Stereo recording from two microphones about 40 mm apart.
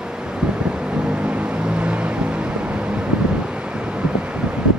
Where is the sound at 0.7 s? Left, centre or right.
Right.